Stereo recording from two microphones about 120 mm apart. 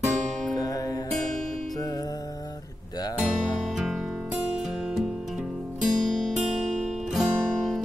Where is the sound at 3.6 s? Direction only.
Centre (ahead or behind).